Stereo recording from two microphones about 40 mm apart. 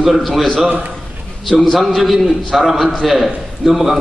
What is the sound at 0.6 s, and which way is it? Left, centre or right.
Speech, right.